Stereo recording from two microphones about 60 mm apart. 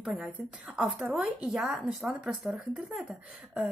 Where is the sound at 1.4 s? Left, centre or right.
Centre.